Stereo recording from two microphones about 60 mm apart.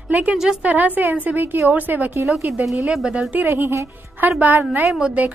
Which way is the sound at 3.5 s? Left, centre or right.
Right.